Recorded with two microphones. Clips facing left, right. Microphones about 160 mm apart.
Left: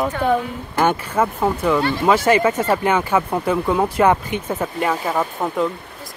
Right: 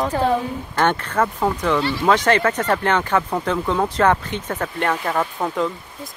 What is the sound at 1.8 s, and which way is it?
Speech, 50° left (ahead or behind).